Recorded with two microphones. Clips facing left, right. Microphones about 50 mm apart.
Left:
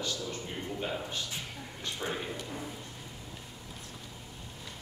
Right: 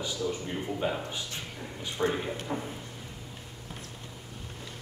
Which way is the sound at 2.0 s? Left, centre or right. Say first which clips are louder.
Right 8 dB; right.